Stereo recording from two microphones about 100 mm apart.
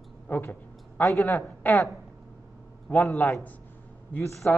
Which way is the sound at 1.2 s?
15° left (ahead or behind).